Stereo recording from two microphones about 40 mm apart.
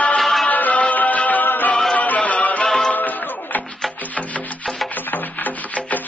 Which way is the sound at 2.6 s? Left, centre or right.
Centre.